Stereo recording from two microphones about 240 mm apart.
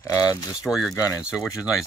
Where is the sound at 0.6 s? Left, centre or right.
Centre.